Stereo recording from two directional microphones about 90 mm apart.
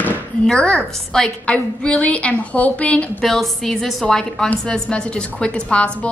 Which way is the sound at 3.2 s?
5° left (ahead or behind).